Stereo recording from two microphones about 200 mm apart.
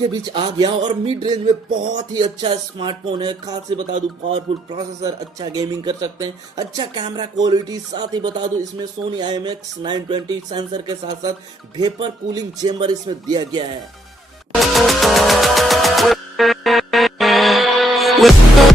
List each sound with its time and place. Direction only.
0.1 s speech: 25° right (ahead or behind)
14.5 s music: centre (ahead or behind)